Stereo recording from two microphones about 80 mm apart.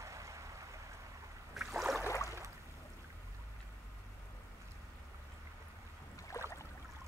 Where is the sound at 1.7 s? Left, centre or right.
Centre.